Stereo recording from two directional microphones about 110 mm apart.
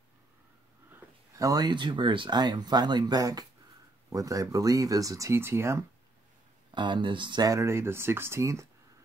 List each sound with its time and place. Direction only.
1.3 s speech: 35° right (ahead or behind)
6.7 s speech: 45° right (ahead or behind)
7.5 s speech: 25° right (ahead or behind)